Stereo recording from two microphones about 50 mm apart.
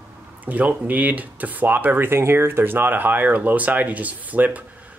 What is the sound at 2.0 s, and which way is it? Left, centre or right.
Speech, right.